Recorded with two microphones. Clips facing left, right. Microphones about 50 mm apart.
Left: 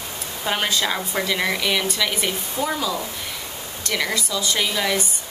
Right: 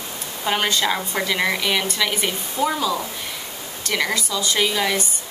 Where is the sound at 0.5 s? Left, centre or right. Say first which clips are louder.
Right 2 dB; centre.